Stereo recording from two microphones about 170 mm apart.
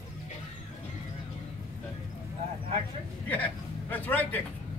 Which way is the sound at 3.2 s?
10° left (ahead or behind).